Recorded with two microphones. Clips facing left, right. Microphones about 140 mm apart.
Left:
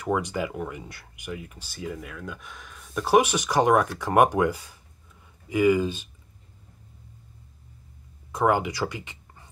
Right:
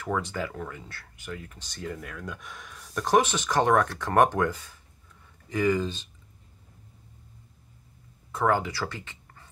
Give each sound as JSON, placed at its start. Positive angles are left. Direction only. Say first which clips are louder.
{"t": 0.0, "sound": "speech", "louder": "left 4 dB", "side_deg": 15}
{"t": 8.3, "sound": "speech", "louder": "left 2 dB", "side_deg": 15}